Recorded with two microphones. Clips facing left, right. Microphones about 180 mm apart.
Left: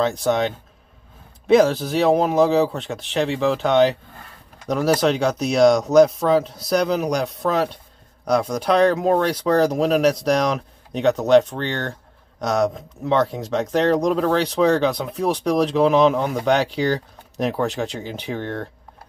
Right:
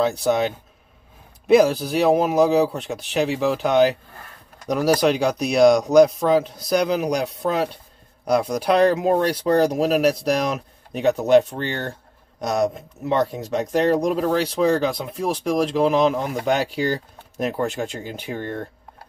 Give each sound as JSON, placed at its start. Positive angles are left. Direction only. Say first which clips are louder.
{"t": 0.2, "sound": "speech", "louder": "even", "side_deg": -5}
{"t": 6.4, "sound": "speech", "louder": "left 1 dB", "side_deg": 30}
{"t": 6.7, "sound": "speech", "louder": "even", "side_deg": -5}